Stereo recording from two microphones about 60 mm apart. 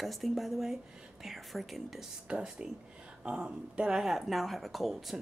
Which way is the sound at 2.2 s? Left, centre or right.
Centre.